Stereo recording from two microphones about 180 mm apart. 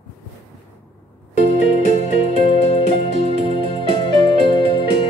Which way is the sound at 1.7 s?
35° left (ahead or behind).